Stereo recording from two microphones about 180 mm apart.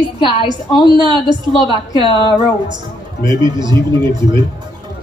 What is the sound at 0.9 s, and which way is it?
A man's voice, 25° right (ahead or behind).